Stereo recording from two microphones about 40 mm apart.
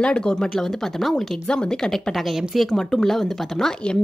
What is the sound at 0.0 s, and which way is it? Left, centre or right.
Speech, left.